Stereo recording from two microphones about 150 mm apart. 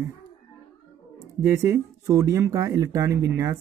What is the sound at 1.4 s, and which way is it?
Speech, 20° right (ahead or behind).